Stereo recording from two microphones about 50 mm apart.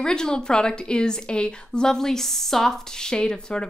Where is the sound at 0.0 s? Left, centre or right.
Centre.